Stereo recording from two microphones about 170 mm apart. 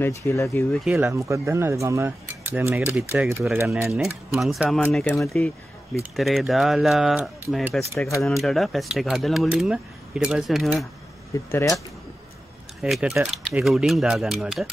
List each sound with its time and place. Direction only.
0.0 s speech: 15° left (ahead or behind)
0.9 s speech: 15° right (ahead or behind); by 4.8 s centre (ahead or behind)
5.0 s speech: 15° left (ahead or behind)
6.1 s speech: centre (ahead or behind)
11.3 s speech: 20° left (ahead or behind)
12.8 s speech: 5° right (ahead or behind)